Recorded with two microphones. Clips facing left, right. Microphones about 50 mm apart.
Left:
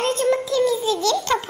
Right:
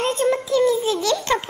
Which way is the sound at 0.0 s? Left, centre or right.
Right.